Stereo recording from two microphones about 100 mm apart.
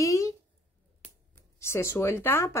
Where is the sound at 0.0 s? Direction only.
35° left (ahead or behind).